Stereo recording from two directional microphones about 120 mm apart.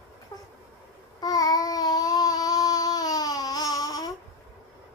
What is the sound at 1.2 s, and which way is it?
Babbling, 35° left (ahead or behind).